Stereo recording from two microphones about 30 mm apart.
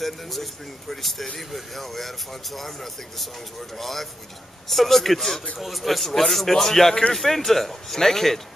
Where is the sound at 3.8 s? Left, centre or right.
Centre.